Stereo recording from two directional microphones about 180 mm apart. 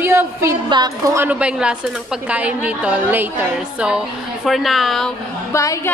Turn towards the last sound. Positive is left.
turn(degrees=15)  # may be behind; listen again after turning